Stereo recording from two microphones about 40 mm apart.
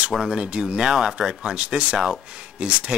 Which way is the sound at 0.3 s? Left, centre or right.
Right.